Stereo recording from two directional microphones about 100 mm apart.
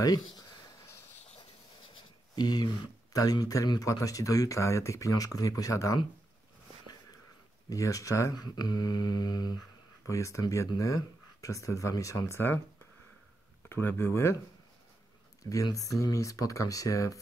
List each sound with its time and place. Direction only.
2.0 s speech: 45° left (ahead or behind)
7.7 s speech: 35° left (ahead or behind)
10.0 s speech: 30° left (ahead or behind)
11.4 s speech: 30° left (ahead or behind)
13.7 s speech: 25° left (ahead or behind)
15.5 s speech: 35° left (ahead or behind)